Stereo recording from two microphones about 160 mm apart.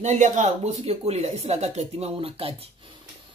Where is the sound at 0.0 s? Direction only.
50° right (ahead or behind).